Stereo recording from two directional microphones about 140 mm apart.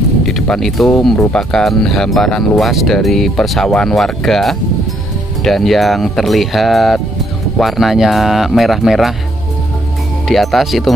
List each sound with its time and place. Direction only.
0.2 s speech: 5° left (ahead or behind)
10.2 s speech: centre (ahead or behind)